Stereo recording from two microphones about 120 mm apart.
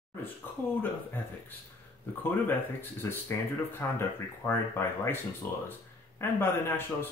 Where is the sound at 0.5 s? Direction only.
15° left (ahead or behind).